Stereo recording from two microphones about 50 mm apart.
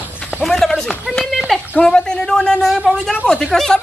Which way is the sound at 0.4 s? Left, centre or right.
Centre.